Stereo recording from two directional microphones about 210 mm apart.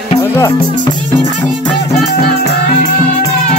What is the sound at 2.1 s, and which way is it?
Music, 45° left (ahead or behind).